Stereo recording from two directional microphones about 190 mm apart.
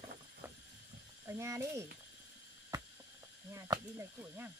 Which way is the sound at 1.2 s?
15° right (ahead or behind).